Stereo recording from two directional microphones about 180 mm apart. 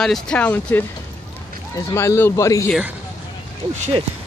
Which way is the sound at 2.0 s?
15° left (ahead or behind).